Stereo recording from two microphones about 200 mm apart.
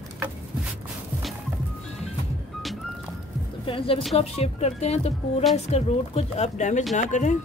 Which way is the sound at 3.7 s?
25° left (ahead or behind).